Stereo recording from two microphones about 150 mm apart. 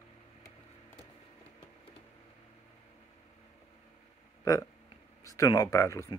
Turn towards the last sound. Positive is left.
turn(degrees=20)  # may be behind; listen again after turning